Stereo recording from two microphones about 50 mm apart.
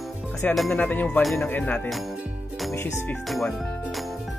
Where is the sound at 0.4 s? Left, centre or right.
Left.